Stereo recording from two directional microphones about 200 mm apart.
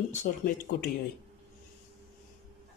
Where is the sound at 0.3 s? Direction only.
40° left (ahead or behind).